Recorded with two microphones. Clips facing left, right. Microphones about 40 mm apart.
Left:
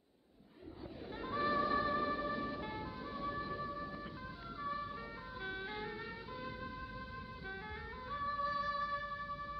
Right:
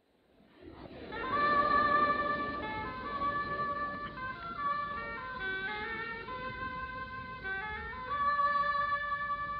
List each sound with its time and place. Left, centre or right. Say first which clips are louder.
1.1 s music: right 7 dB; right